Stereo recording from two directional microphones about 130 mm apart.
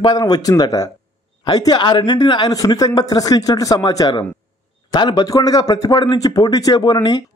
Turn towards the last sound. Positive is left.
turn(degrees=35)  # may be behind; listen again after turning